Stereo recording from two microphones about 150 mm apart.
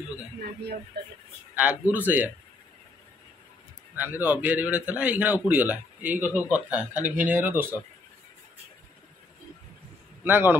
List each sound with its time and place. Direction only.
1.0 s speech: 90° right
1.6 s a man's voice: 10° right (ahead or behind)
3.9 s a man's voice: 10° right (ahead or behind)
10.2 s a man's voice: 15° right (ahead or behind)